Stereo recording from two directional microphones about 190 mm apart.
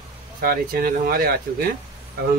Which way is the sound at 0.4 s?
50° right (ahead or behind).